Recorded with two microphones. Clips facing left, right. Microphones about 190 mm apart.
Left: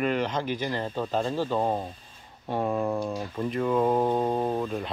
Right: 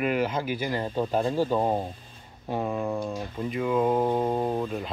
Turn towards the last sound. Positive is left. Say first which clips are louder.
# even
turn(degrees=0)  # may be behind; listen again after turning